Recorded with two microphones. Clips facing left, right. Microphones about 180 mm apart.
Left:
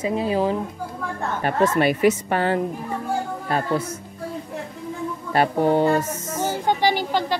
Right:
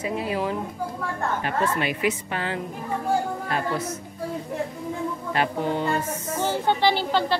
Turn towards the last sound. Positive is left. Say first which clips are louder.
# even
turn(degrees=15)  # may be behind; listen again after turning